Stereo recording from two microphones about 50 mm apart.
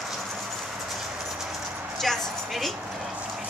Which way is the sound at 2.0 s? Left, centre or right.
Centre.